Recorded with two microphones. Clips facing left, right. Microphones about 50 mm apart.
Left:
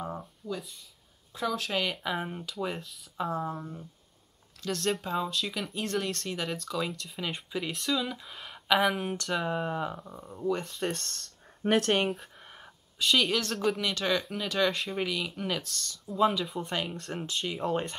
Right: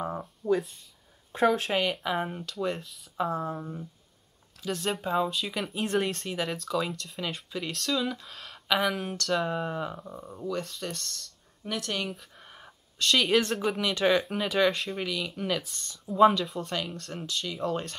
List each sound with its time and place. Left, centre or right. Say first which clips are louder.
0.4 s speech: right 11 dB; centre
1.3 s speech: right 8 dB; right
1.7 s speech: right 3 dB; centre
10.4 s speech: left 3 dB; left
12.4 s a sound: even; centre
13.5 s speech: right 1 dB; centre
15.7 s speech: left 4 dB; right
16.1 s speech: right 6 dB; centre
16.5 s speech: even; centre